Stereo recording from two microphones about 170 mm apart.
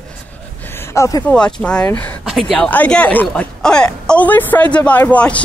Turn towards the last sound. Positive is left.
turn(degrees=10)  # may be behind; listen again after turning